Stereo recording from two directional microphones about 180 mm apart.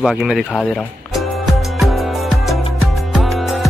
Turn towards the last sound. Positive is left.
turn(degrees=0)  # may be behind; listen again after turning